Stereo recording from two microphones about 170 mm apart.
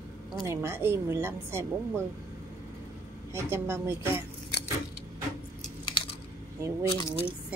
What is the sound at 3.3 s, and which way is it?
Speech, 15° right (ahead or behind).